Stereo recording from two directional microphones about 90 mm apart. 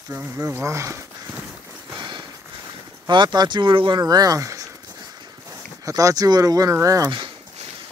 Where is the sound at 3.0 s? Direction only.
55° right (ahead or behind).